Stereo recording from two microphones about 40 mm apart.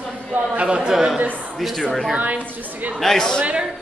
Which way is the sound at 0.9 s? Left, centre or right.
Centre.